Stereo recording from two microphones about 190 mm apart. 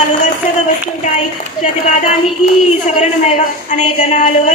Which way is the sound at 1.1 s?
40° left (ahead or behind).